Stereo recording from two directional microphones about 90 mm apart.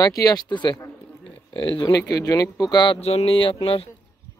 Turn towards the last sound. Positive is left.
turn(degrees=90)